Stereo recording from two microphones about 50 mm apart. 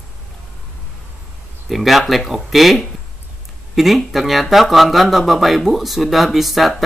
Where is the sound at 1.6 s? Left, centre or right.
Centre.